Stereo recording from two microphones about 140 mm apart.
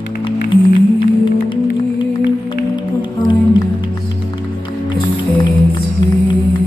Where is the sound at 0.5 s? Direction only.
35° left (ahead or behind).